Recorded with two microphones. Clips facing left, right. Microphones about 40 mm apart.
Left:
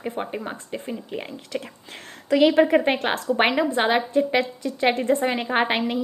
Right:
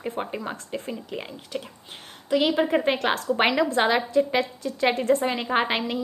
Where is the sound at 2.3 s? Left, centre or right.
Left.